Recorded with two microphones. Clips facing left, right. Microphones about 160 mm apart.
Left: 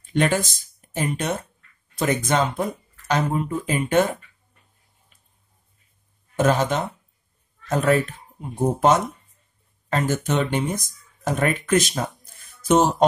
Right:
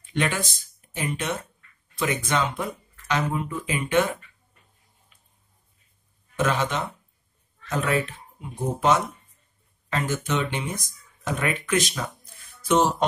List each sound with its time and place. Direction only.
0.0 s speech: 45° left (ahead or behind)
6.3 s speech: 45° left (ahead or behind)